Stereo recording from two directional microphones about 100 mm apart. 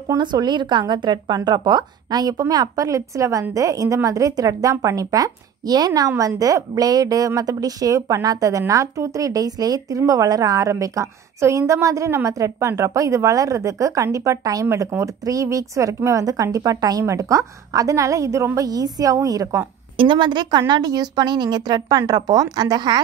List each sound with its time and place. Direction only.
0.2 s speech: 50° right (ahead or behind)
20.0 s speech: 50° right (ahead or behind)